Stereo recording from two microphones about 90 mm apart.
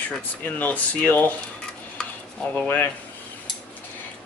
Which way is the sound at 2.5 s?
20° left (ahead or behind).